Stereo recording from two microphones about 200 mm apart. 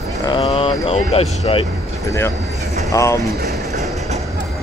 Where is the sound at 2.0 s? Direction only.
15° left (ahead or behind).